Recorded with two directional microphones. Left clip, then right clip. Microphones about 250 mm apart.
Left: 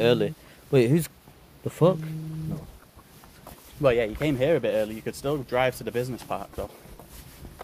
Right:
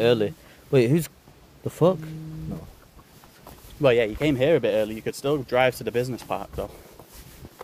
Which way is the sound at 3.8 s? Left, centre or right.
Right.